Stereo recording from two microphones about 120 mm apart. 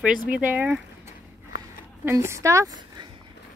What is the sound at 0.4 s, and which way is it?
A woman's voice, 15° right (ahead or behind).